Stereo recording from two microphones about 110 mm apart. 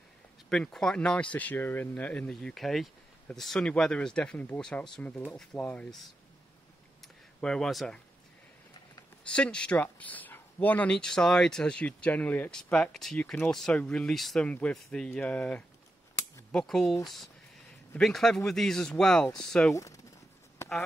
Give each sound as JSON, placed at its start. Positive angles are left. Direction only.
{"t": 0.5, "sound": "speech", "side_deg": 5}
{"t": 7.3, "sound": "speech", "side_deg": 5}
{"t": 9.2, "sound": "speech", "side_deg": 10}
{"t": 19.7, "sound": "speech", "side_deg": 30}